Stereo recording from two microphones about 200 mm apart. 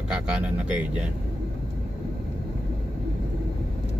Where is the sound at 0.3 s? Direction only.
5° right (ahead or behind).